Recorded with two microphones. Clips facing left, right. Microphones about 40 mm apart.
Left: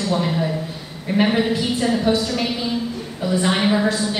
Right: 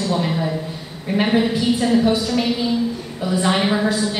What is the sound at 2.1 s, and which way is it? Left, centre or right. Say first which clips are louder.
Speech: right 1 dB; centre.